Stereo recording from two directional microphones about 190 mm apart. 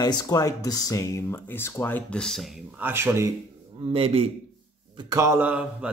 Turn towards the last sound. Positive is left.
turn(degrees=-5)  # may be behind; listen again after turning